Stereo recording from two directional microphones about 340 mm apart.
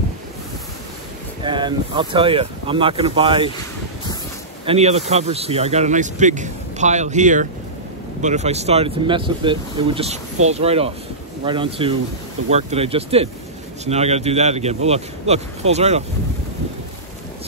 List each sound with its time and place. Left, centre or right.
1.4 s speech: centre
4.6 s speech: centre